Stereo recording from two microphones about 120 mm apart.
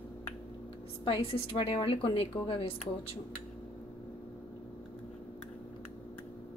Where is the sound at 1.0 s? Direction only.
50° left (ahead or behind).